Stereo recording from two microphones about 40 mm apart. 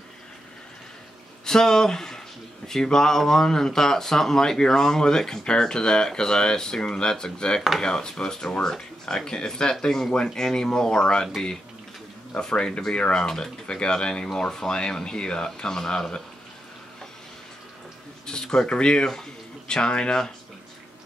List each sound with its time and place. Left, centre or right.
1.4 s speech: centre
12.4 s speech: left
18.2 s speech: centre